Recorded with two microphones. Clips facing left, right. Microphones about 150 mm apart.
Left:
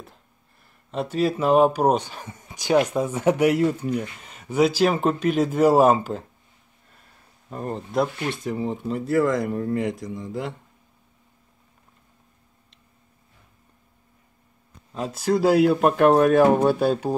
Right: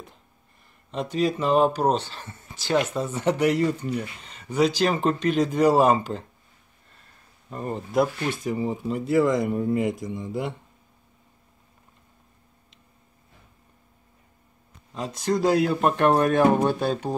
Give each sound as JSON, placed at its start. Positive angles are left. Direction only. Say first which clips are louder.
{"t": 0.9, "sound": "speech", "louder": "left 1 dB", "side_deg": 5}
{"t": 7.4, "sound": "speech", "louder": "left 1 dB", "side_deg": 0}
{"t": 9.1, "sound": "speech", "louder": "even", "side_deg": -20}
{"t": 10.1, "sound": "speech", "louder": "right 1 dB", "side_deg": -20}
{"t": 15.0, "sound": "speech", "louder": "left 3 dB", "side_deg": 10}